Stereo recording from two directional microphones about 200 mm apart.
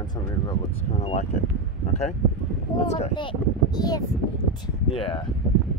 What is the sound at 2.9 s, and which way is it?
Speech, 30° left (ahead or behind).